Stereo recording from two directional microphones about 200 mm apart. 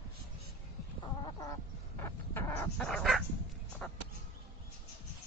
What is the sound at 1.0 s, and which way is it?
Chicken, 20° left (ahead or behind).